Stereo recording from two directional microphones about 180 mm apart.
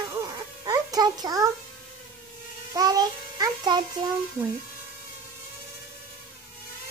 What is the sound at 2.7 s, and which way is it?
Toothbrush, 20° right (ahead or behind).